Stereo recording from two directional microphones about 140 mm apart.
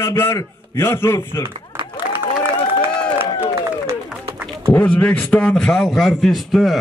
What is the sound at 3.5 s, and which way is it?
Clapping, 20° right (ahead or behind).